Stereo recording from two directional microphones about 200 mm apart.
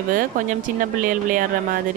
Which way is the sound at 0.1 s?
40° right (ahead or behind).